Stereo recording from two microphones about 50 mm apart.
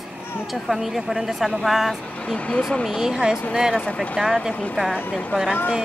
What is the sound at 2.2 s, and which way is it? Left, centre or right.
Speech, left.